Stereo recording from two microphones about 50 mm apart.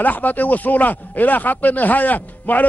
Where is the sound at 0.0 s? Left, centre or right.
Left.